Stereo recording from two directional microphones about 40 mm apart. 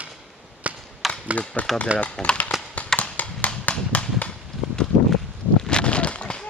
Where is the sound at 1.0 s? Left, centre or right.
Centre.